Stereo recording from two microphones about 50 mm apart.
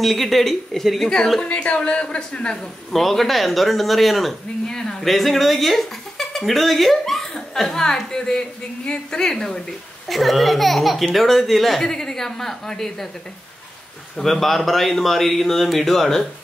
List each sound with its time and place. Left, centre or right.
0.0 s speech: centre
1.5 s a woman's voice: left
2.9 s speech: centre
4.7 s speech: centre
14.1 s speech: centre